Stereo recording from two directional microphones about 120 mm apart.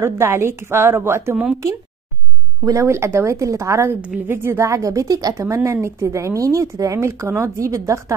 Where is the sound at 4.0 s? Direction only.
10° right (ahead or behind).